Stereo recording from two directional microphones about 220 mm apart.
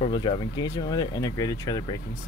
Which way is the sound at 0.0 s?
20° left (ahead or behind).